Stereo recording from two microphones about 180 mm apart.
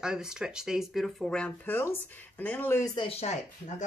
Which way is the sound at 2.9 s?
30° left (ahead or behind).